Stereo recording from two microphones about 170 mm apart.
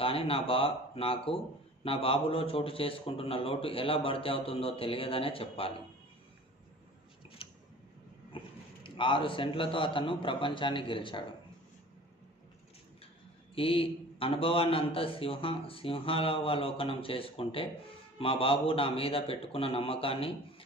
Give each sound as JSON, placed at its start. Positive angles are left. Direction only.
{"t": 0.0, "sound": "a man's voice", "side_deg": 35}
{"t": 7.4, "sound": "a sound", "side_deg": 35}
{"t": 8.8, "sound": "a man's voice", "side_deg": 30}
{"t": 13.6, "sound": "a man's voice", "side_deg": 35}